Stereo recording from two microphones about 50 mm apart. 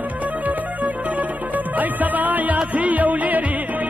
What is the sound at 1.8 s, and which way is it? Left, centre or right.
Music, right.